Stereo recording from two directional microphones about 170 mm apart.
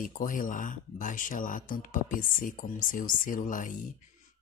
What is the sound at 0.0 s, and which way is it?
Speech, 50° left (ahead or behind).